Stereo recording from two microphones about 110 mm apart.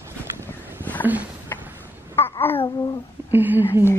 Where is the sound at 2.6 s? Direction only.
40° left (ahead or behind).